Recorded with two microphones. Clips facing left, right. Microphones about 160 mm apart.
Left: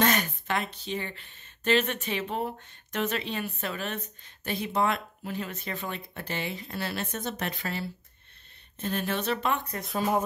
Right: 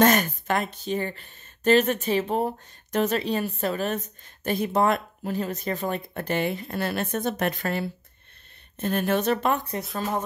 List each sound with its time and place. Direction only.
0.0 s speech: 45° right (ahead or behind)